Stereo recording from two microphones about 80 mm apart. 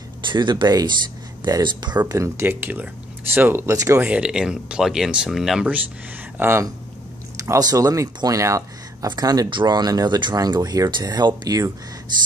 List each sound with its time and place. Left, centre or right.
0.3 s speech: right
1.4 s speech: right
2.0 s speech: right
3.6 s speech: right
4.0 s speech: centre
6.3 s speech: right
7.3 s speech: right
9.0 s speech: right
9.5 s speech: right
10.9 s speech: right